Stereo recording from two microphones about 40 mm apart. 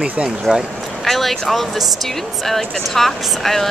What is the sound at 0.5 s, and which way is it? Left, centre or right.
Speech, centre.